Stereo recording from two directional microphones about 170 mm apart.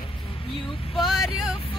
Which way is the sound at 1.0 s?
Centre (ahead or behind).